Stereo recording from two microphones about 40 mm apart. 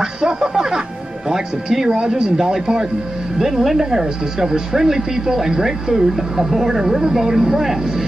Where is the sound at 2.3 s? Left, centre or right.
Centre.